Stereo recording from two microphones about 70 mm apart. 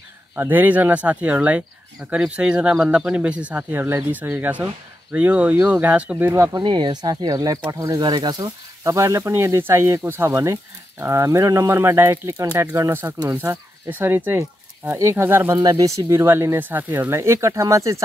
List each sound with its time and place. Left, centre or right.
0.4 s speech: right
3.5 s speech: right
4.4 s speech: right
6.5 s speech: right
8.0 s speech: right
8.8 s speech: right
10.3 s speech: right
13.8 s speech: right
15.5 s speech: right
16.1 s speech: right
16.5 s speech: right
17.1 s speech: right